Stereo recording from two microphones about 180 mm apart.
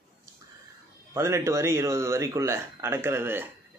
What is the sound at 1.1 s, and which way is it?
A man's voice, 15° right (ahead or behind).